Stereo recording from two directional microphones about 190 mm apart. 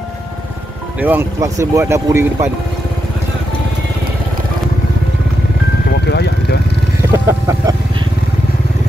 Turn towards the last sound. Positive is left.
turn(degrees=-15)  # may be behind; listen again after turning